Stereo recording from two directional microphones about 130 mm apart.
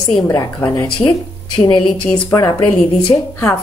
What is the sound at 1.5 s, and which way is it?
Speech, 40° left (ahead or behind).